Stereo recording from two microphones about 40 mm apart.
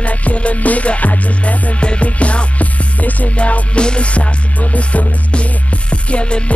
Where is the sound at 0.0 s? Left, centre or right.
Left.